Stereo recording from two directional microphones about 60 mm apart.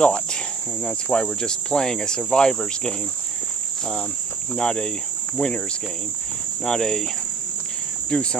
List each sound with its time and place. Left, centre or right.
0.0 s insect: centre
1.2 s cricket: centre
4.6 s cricket: centre
5.4 s cricket: left
6.6 s cricket: centre
8.1 s cricket: centre